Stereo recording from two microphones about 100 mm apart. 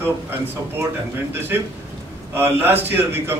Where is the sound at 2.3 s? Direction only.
20° right (ahead or behind).